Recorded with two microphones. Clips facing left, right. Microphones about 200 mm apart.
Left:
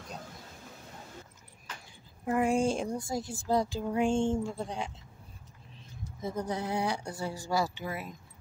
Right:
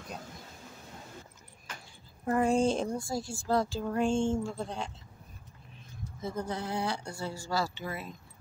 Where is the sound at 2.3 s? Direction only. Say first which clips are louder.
Right 1 dB; 10° left (ahead or behind).